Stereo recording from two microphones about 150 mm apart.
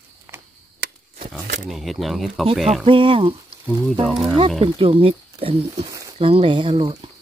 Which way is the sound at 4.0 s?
Centre (ahead or behind).